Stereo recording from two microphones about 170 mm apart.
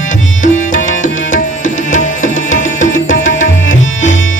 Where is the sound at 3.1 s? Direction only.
90° left.